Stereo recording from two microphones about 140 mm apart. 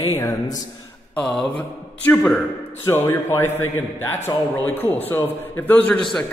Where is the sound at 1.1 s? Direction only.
5° left (ahead or behind).